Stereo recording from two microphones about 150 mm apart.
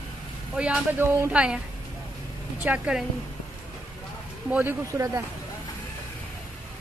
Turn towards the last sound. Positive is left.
turn(degrees=-20)  # may be behind; listen again after turning